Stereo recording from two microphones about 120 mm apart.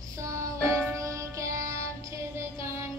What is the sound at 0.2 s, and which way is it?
Music, 25° right (ahead or behind).